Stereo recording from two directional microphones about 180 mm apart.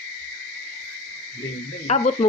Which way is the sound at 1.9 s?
40° left (ahead or behind).